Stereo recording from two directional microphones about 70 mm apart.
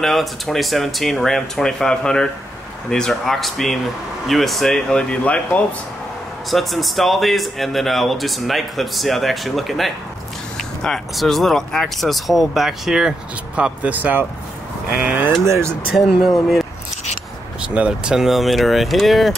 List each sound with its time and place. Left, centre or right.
0.0 s speech: centre
6.5 s speech: centre
13.6 s speech: centre
15.4 s speech: right
16.1 s speech: centre
17.6 s speech: centre